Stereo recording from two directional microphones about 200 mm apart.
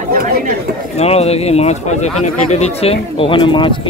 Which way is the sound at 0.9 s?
30° left (ahead or behind).